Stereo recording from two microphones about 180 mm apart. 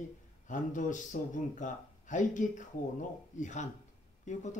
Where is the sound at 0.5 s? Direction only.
45° left (ahead or behind).